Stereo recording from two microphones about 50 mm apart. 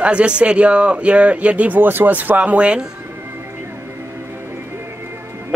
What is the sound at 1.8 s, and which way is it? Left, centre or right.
Speech, right.